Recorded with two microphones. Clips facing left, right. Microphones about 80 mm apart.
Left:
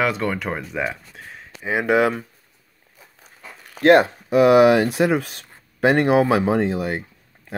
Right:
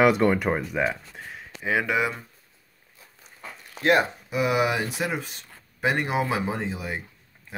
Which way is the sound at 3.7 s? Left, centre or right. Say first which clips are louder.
Left 8 dB; left.